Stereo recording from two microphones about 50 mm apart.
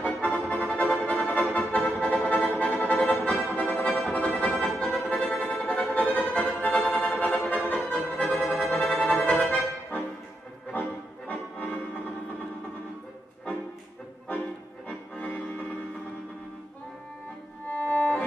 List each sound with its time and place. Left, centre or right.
0.0 s music: left
4.6 s music: left
5.0 s music: left
10.7 s accordion: left
14.9 s music: left
17.6 s music: left